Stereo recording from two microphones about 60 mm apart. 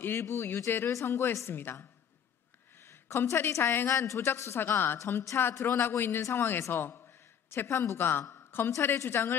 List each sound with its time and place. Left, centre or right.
0.0 s a man's voice: left
3.9 s a woman's voice: left
4.3 s a man's voice: left
4.9 s a woman's voice: left
5.4 s a man's voice: left
7.4 s a woman's voice: left
8.7 s a woman's voice: left